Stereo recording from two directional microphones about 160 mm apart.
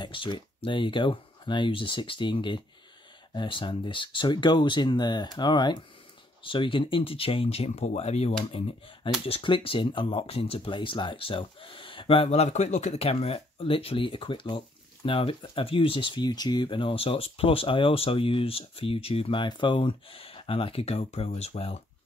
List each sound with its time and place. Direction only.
0.0 s speech: 30° left (ahead or behind)